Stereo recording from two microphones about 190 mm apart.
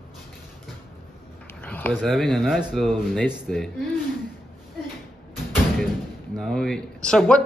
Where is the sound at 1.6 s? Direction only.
10° left (ahead or behind).